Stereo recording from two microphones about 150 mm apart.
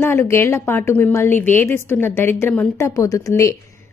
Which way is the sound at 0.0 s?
15° left (ahead or behind).